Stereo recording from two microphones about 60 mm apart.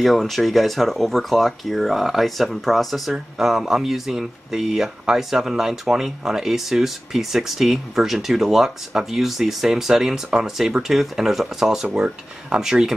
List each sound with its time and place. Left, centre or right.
0.0 s speech: centre